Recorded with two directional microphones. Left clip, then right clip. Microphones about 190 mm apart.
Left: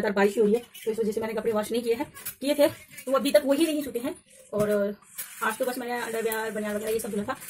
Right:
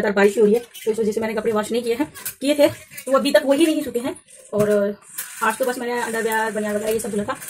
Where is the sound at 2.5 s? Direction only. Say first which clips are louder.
Right 6 dB; 10° left (ahead or behind).